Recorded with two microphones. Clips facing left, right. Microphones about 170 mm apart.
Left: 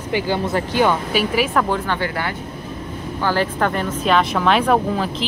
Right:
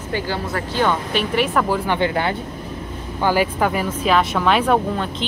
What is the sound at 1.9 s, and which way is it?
Speech, 20° right (ahead or behind).